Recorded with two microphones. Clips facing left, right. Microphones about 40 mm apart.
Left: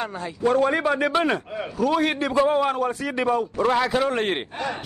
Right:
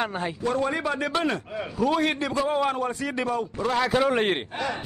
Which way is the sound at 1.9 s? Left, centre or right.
Centre.